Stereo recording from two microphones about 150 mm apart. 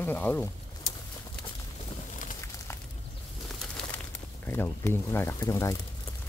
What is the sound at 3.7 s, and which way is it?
Speech, 10° left (ahead or behind).